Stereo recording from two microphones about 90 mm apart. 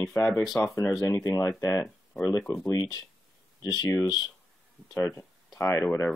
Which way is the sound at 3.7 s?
45° left (ahead or behind).